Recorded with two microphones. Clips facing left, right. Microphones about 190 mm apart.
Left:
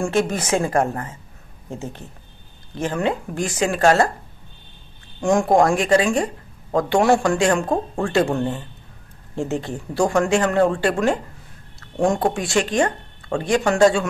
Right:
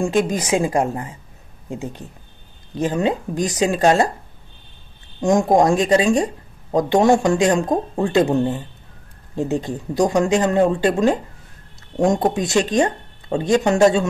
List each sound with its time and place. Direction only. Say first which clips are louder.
0.0 s speech: right 2 dB; 15° right (ahead or behind)
5.2 s speech: right 1 dB; 20° right (ahead or behind)